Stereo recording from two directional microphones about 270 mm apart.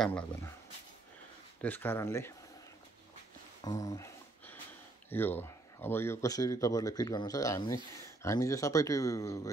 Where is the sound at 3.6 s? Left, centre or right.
Centre.